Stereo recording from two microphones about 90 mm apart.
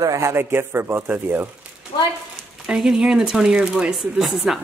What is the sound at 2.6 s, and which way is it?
Speech, 5° right (ahead or behind).